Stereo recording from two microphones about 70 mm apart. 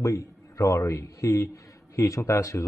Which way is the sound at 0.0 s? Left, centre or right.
Left.